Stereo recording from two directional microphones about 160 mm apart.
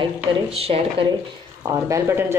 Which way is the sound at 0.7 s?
45° right (ahead or behind).